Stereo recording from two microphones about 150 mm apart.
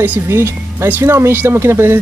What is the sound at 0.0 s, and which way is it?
Speech, 15° right (ahead or behind).